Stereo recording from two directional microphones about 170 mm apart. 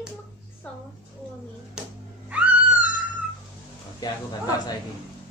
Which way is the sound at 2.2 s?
5° right (ahead or behind).